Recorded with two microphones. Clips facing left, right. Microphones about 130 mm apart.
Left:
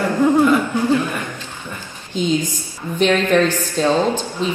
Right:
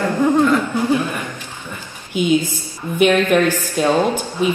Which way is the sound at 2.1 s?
10° right (ahead or behind).